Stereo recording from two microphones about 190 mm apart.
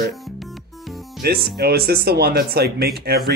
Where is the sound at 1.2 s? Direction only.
55° right (ahead or behind).